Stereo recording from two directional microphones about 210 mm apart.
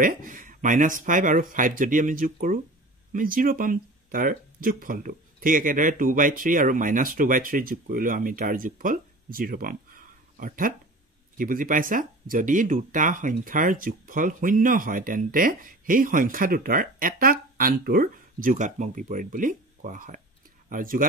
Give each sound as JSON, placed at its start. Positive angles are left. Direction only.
{"t": 0.0, "sound": "speech", "side_deg": -40}